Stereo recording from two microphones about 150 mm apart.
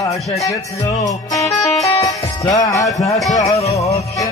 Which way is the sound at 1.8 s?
25° left (ahead or behind).